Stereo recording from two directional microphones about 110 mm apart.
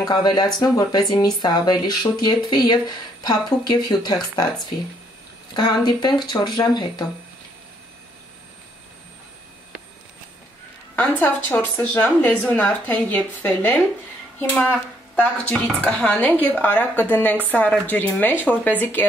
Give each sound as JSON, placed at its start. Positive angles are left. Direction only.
{"t": 0.0, "sound": "speech", "side_deg": 35}
{"t": 11.0, "sound": "speech", "side_deg": 15}